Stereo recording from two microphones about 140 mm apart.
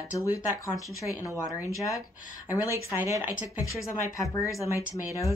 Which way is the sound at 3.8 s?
20° left (ahead or behind).